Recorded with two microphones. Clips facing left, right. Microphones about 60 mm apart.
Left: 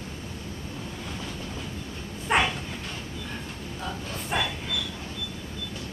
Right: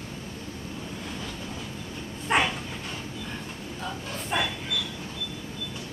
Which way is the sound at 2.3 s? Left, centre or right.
Centre.